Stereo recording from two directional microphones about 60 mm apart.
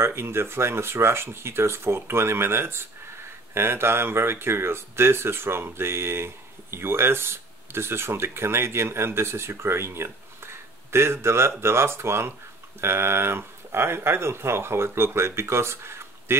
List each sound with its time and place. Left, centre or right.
0.0 s speech: right